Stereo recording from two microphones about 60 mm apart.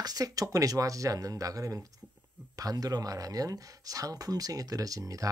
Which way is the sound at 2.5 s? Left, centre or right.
Right.